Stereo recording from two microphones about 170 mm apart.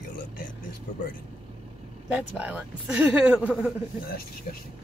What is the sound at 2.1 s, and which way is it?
Speech, 10° right (ahead or behind).